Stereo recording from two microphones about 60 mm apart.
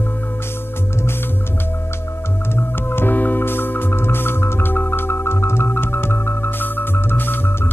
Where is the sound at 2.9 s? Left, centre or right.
Left.